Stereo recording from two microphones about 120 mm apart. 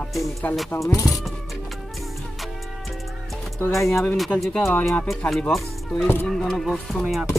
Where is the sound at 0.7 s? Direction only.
25° left (ahead or behind).